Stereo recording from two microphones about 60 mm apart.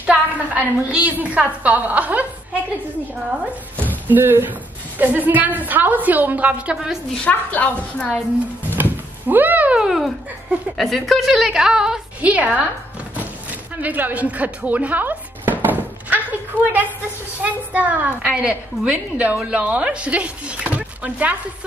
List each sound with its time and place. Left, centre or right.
0.0 s a woman's voice: right
3.7 s a sound: left
4.1 s a woman's voice: right; by 7.0 s centre
7.2 s a woman's voice: left
8.7 s a sound: right
9.8 s a woman's voice: centre
12.2 s a woman's voice: right
13.7 s a woman's voice: right
18.2 s a woman's voice: centre